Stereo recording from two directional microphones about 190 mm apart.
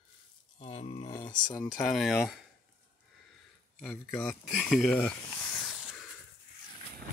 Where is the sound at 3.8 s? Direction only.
Centre (ahead or behind).